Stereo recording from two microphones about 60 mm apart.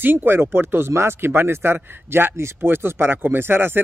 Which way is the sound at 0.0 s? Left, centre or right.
Right.